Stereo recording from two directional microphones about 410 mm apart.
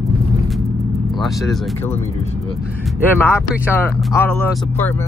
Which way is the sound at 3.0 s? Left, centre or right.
Centre.